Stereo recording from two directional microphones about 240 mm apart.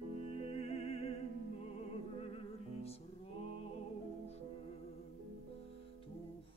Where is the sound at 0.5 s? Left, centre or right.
Left.